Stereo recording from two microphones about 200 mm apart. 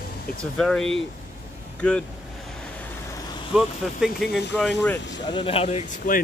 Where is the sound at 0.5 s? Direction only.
5° left (ahead or behind).